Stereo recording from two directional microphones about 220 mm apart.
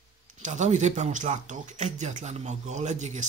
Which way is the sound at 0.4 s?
30° right (ahead or behind).